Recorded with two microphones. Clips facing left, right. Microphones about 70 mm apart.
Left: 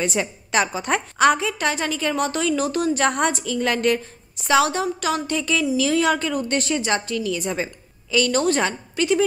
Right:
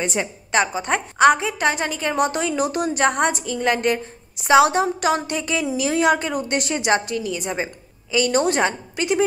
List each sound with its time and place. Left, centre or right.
0.5 s a woman's voice: centre
1.2 s a woman's voice: centre
2.9 s a woman's voice: centre